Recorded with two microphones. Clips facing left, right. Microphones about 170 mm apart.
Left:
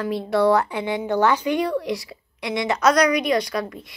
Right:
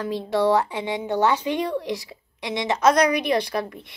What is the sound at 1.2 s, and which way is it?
Speech, 25° right (ahead or behind).